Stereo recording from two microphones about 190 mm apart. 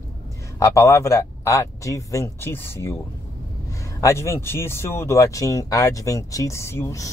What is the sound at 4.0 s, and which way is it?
Speech, 15° left (ahead or behind).